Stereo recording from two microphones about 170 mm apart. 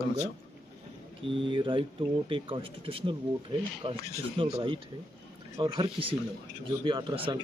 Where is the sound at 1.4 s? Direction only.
30° right (ahead or behind).